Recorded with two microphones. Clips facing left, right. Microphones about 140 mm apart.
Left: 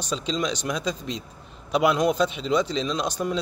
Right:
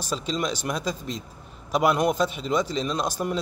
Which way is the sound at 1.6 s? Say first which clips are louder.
Left 1 dB; 50° right (ahead or behind).